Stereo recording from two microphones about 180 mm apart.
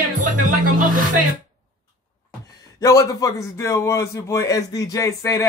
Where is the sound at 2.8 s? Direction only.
20° left (ahead or behind).